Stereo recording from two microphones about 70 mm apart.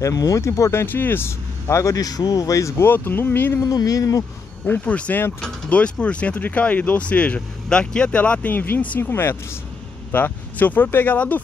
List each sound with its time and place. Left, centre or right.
0.0 s speech: left
0.8 s speech: left
2.8 s speech: left
3.7 s speech: left
4.6 s speech: left
9.1 s speech: left